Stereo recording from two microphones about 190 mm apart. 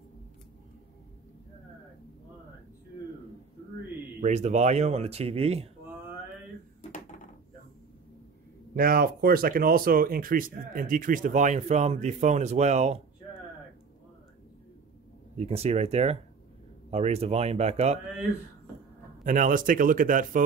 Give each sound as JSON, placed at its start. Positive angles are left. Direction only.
{"t": 4.2, "sound": "speech", "side_deg": -40}
{"t": 8.7, "sound": "speech", "side_deg": -50}
{"t": 15.3, "sound": "speech", "side_deg": -35}
{"t": 19.2, "sound": "speech", "side_deg": -45}